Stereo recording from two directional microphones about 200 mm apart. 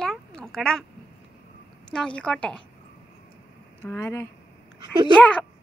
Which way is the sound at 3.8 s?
15° left (ahead or behind).